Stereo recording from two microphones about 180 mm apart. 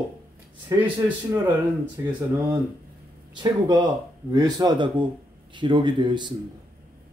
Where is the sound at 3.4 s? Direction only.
25° right (ahead or behind).